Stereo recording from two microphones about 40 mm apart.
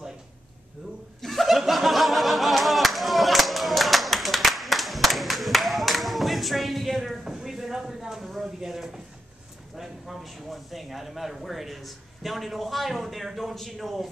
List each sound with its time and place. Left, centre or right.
1.2 s snicker: centre
7.2 s a sound: centre
9.8 s speech: centre